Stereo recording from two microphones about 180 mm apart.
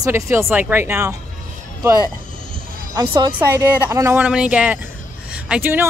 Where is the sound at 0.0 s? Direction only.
15° right (ahead or behind).